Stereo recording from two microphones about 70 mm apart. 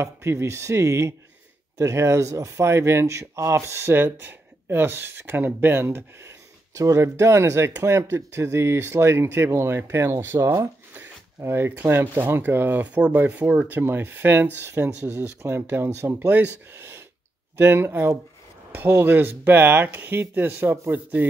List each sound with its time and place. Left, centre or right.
0.0 s speech: right
3.9 s speech: right
11.4 s speech: right
13.8 s speech: right
16.7 s a sound: right
17.6 s speech: right